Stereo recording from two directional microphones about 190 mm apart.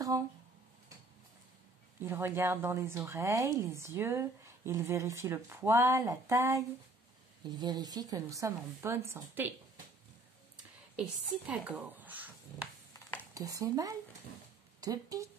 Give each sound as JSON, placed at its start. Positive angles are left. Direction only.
{"t": 2.0, "sound": "speech", "side_deg": -10}
{"t": 11.0, "sound": "speech", "side_deg": -5}
{"t": 12.9, "sound": "a sound", "side_deg": 10}
{"t": 13.3, "sound": "speech", "side_deg": -15}